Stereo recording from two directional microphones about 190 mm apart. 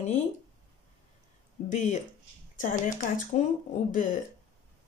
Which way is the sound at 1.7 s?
40° left (ahead or behind).